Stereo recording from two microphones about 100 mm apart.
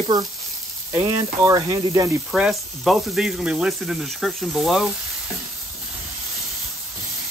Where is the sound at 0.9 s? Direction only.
30° right (ahead or behind).